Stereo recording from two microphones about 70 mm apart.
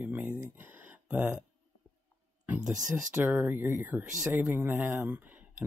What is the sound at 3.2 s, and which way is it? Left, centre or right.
Speech, right.